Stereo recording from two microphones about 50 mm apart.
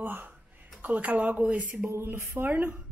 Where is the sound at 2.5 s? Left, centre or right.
Right.